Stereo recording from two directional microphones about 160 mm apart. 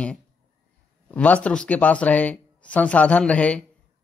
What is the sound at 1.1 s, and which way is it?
Speech, 10° left (ahead or behind).